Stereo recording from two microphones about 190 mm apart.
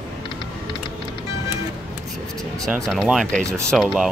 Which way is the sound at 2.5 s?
15° right (ahead or behind).